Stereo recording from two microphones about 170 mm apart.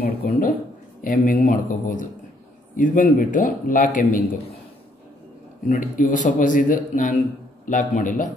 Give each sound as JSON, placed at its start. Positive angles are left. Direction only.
{"t": 0.0, "sound": "a sound", "side_deg": 60}
{"t": 1.0, "sound": "a man's voice", "side_deg": 50}
{"t": 5.7, "sound": "a man's voice", "side_deg": 50}